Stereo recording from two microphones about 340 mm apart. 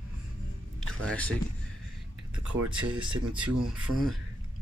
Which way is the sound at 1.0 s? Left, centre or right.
Centre.